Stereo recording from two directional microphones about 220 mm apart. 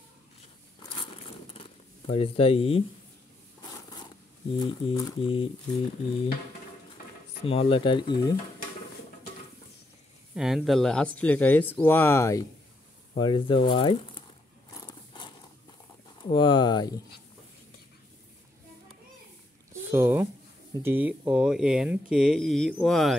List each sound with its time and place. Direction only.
0.8 s crumpling: 25° left (ahead or behind)
4.6 s speech: 20° left (ahead or behind)
7.4 s speech: 25° left (ahead or behind)
10.3 s speech: centre (ahead or behind); by 14.2 s 25° left (ahead or behind)
14.7 s a sound: 20° left (ahead or behind)
16.2 s speech: 20° left (ahead or behind)
19.7 s a sound: 10° right (ahead or behind)
20.8 s speech: 10° right (ahead or behind)